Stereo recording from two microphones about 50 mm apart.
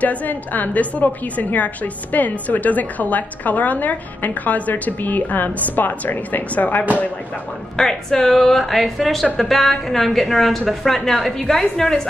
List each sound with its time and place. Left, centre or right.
0.0 s a woman's voice: left
7.7 s a woman's voice: centre